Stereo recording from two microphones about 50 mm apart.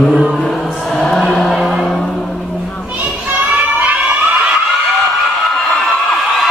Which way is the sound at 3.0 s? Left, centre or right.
Right.